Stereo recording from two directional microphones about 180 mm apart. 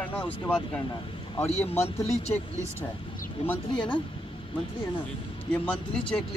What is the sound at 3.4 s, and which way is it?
Speech, 35° left (ahead or behind).